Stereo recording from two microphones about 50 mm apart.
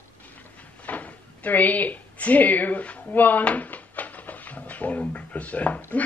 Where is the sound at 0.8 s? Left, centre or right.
Left.